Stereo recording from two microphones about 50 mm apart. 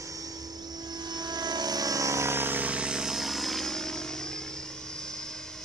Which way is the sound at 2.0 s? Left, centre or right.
Right.